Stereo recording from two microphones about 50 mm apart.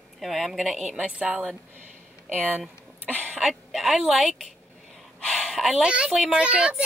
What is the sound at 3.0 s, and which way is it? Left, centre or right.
Cough, left.